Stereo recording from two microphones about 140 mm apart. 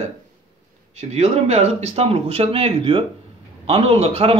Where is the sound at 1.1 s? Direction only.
50° right (ahead or behind).